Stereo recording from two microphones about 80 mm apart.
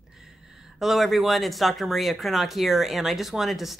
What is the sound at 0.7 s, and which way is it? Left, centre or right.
Speech, centre.